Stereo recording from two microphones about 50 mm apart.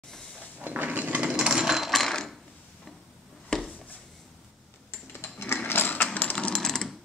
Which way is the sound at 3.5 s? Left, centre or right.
Centre.